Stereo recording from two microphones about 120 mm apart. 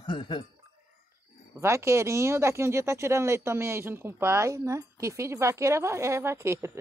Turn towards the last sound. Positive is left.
turn(degrees=-25)  # may be behind; listen again after turning